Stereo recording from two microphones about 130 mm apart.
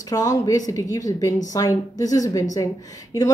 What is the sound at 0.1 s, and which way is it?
Speech, 25° left (ahead or behind).